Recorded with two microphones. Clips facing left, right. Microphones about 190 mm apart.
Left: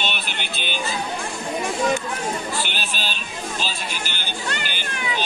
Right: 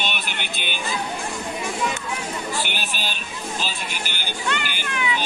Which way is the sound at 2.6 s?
15° right (ahead or behind).